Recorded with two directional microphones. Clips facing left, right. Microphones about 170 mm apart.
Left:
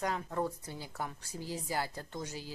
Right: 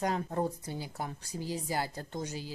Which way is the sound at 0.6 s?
15° right (ahead or behind).